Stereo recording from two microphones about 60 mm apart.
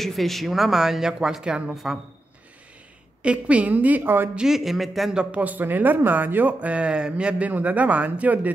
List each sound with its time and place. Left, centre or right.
0.0 s speech: centre
3.2 s speech: right
4.4 s speech: centre
5.1 s a man's voice: centre
5.4 s speech: right